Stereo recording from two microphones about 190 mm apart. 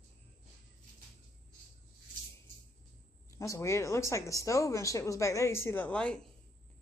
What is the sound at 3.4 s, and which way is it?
Speech, 15° left (ahead or behind).